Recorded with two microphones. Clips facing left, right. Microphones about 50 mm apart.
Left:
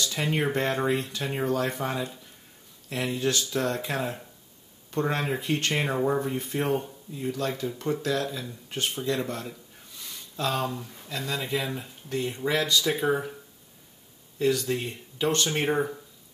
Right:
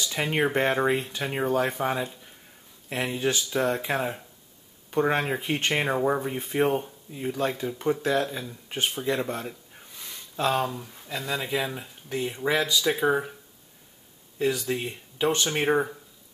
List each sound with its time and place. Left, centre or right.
0.0 s speech: centre
8.6 s a sound: centre
10.6 s speech: centre
14.4 s speech: centre